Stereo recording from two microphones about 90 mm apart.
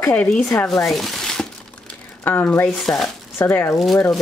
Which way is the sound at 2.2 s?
25° left (ahead or behind).